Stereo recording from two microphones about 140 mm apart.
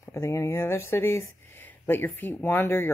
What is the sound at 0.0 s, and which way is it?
Speech, 20° left (ahead or behind).